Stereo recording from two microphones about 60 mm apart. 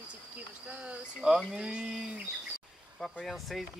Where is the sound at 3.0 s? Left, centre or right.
Centre.